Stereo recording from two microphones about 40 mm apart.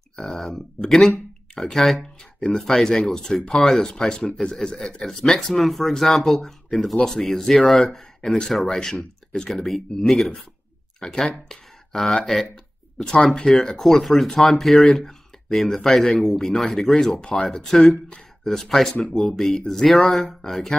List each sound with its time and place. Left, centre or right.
0.2 s a man's voice: centre
5.0 s speech: centre